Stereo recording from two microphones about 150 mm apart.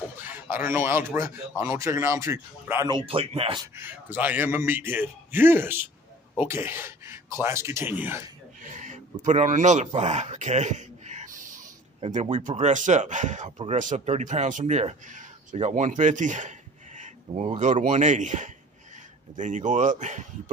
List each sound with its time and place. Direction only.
0.2 s a man's voice: 15° right (ahead or behind)
2.9 s speech: 40° right (ahead or behind)
3.7 s a man's voice: 15° right (ahead or behind)
8.6 s a sound: 55° right (ahead or behind)
12.0 s speech: 50° right (ahead or behind)